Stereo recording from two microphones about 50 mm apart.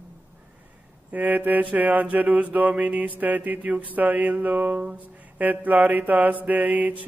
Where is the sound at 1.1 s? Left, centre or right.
Right.